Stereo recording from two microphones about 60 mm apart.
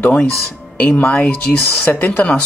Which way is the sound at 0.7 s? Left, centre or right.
Left.